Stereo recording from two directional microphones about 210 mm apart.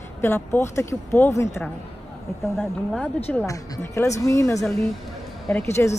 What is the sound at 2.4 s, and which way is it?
Speech, centre (ahead or behind).